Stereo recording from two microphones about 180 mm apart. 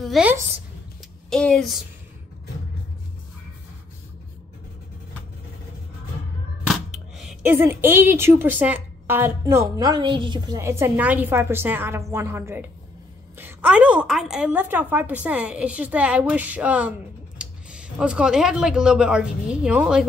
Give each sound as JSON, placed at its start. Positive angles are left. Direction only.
{"t": 0.0, "sound": "a sound", "side_deg": 0}
{"t": 1.3, "sound": "speech", "side_deg": 5}
{"t": 7.2, "sound": "a woman's voice", "side_deg": -5}